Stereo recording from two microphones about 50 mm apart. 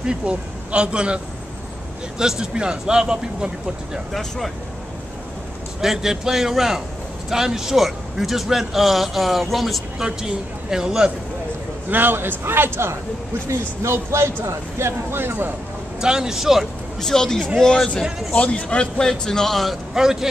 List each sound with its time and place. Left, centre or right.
0.0 s speech: right
4.1 s a man's voice: centre
5.8 s a man's voice: centre
10.0 s speech: centre
11.9 s a man's voice: right
13.5 s speech: right
16.0 s speech: centre
17.0 s speech: centre